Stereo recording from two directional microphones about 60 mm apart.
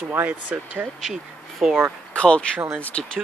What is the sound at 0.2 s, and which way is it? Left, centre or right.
Speech, right.